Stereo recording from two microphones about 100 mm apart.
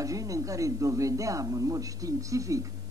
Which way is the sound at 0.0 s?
35° right (ahead or behind).